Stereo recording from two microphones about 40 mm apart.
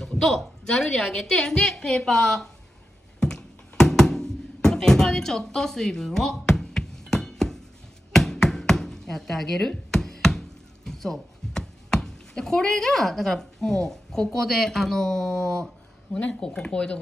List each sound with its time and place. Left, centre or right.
0.0 s a woman's voice: centre
3.2 s music: centre
8.1 s a sound: centre
16.3 s speech: left